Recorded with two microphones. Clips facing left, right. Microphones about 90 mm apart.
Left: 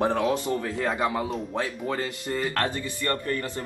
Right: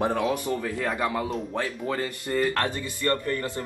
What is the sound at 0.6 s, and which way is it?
Speech, 20° left (ahead or behind).